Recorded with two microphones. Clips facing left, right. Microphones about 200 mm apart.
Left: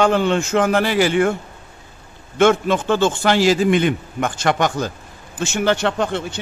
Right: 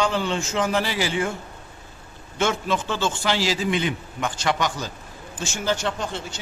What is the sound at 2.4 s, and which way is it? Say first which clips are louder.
A man's voice: left 9 dB; 55° left (ahead or behind).